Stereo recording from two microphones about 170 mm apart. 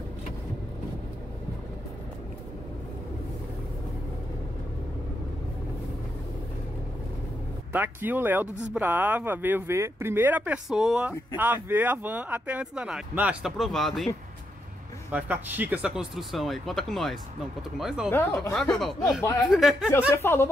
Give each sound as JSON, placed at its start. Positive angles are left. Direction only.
{"t": 7.7, "sound": "speech", "side_deg": -10}
{"t": 15.0, "sound": "speech", "side_deg": -10}
{"t": 18.1, "sound": "speech", "side_deg": 15}
{"t": 18.5, "sound": "speech", "side_deg": 0}
{"t": 20.1, "sound": "speech", "side_deg": 15}